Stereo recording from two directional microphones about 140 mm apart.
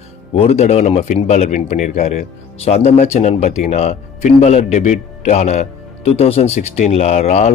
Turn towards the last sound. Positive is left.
turn(degrees=50)  # may be behind; listen again after turning